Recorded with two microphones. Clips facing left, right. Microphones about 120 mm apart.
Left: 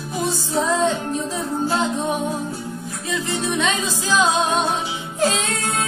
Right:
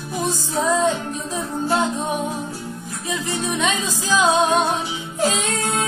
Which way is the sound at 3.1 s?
15° right (ahead or behind).